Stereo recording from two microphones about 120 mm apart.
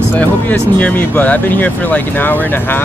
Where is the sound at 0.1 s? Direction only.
15° left (ahead or behind).